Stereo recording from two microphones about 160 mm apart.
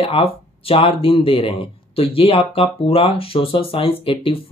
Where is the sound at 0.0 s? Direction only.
35° left (ahead or behind).